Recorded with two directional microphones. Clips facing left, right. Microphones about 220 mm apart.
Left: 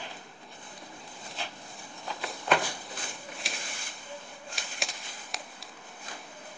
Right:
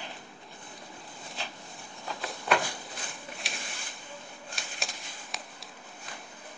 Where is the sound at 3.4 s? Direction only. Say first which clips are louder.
Left 1 dB; centre (ahead or behind).